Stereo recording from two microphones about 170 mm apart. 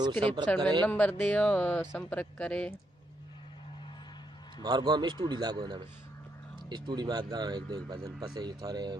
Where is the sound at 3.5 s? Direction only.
30° left (ahead or behind).